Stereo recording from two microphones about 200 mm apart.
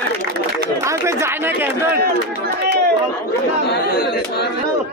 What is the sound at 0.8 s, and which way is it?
Chatter, 15° right (ahead or behind).